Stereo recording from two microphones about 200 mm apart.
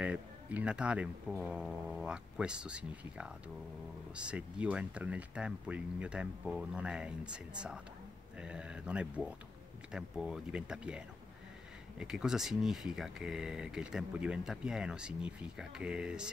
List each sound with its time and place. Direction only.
0.0 s speech: 5° right (ahead or behind)